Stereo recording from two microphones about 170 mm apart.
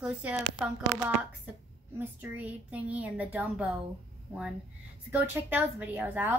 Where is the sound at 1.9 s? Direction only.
10° right (ahead or behind).